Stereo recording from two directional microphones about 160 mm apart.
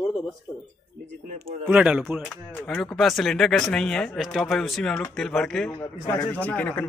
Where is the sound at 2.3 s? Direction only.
10° left (ahead or behind).